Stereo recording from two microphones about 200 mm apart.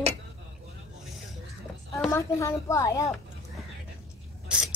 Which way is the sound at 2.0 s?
15° left (ahead or behind).